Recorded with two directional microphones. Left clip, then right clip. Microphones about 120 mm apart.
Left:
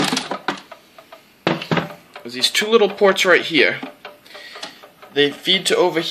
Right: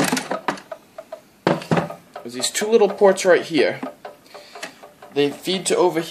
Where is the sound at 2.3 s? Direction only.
Centre (ahead or behind).